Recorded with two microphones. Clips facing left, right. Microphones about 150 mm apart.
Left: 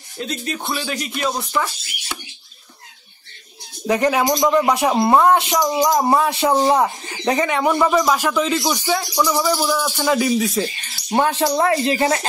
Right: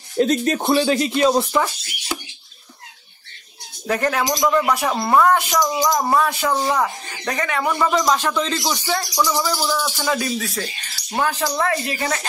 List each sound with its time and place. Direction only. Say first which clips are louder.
0.2 s speech: right 9 dB; 45° right (ahead or behind)
0.7 s speech: right 10 dB; 35° right (ahead or behind)
3.8 s speech: left 3 dB; 15° left (ahead or behind)